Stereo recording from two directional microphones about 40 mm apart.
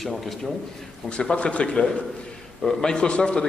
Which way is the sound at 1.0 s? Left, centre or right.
Left.